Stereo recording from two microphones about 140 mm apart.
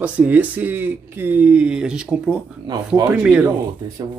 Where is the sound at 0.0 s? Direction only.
10° right (ahead or behind).